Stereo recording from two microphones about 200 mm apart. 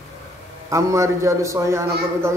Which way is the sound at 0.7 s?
15° right (ahead or behind).